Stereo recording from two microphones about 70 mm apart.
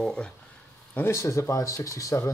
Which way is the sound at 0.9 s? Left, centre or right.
Left.